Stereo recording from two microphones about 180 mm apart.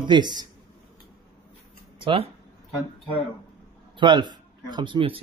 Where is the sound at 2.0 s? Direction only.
30° right (ahead or behind).